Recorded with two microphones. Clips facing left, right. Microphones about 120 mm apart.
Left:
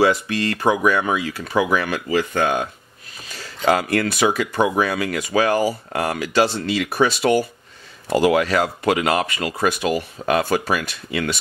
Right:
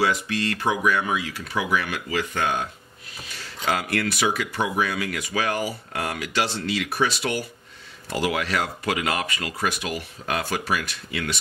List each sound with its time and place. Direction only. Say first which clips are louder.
0.1 s speech: left 4 dB; 40° left (ahead or behind)
3.6 s speech: left 6 dB; 40° left (ahead or behind)
9.8 s speech: left 9 dB; 45° left (ahead or behind)